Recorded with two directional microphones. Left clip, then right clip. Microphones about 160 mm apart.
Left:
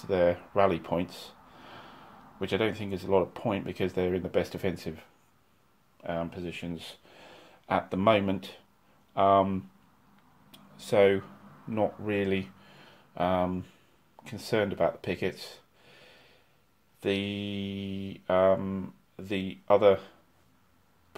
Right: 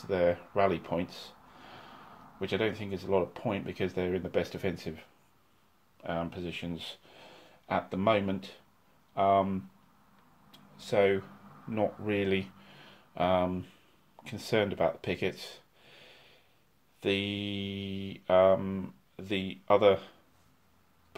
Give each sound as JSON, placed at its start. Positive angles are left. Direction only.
{"t": 0.0, "sound": "speech", "side_deg": 20}
{"t": 5.9, "sound": "speech", "side_deg": -10}
{"t": 7.2, "sound": "speech", "side_deg": 15}
{"t": 10.5, "sound": "a sound", "side_deg": 30}
{"t": 11.7, "sound": "speech", "side_deg": 5}